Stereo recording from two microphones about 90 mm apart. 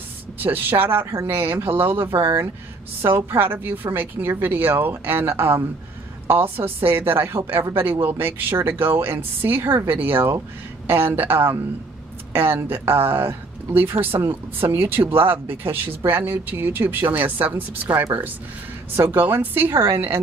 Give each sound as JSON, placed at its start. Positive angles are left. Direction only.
{"t": 0.4, "sound": "speech", "side_deg": -20}
{"t": 18.9, "sound": "speech", "side_deg": -25}